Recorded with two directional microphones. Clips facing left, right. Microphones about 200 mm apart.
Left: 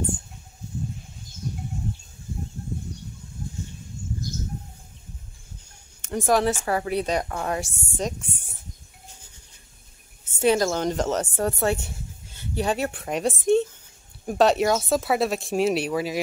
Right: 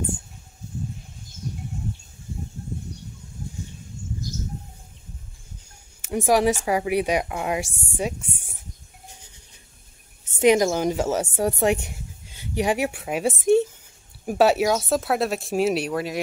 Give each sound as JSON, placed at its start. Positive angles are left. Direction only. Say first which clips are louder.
{"t": 3.6, "sound": "a sound", "louder": "left 1 dB", "side_deg": -15}
{"t": 5.9, "sound": "speech", "louder": "right 2 dB", "side_deg": -10}
{"t": 10.2, "sound": "speech", "louder": "right 3 dB", "side_deg": -15}